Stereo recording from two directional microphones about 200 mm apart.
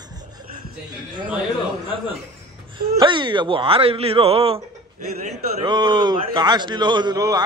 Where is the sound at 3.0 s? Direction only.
25° right (ahead or behind).